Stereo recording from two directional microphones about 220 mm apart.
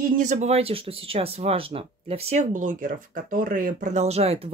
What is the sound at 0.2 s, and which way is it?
Speech, 30° right (ahead or behind).